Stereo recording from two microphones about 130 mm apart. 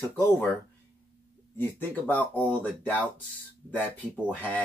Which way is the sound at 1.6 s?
15° left (ahead or behind).